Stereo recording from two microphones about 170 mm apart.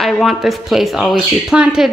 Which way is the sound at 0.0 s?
Centre (ahead or behind).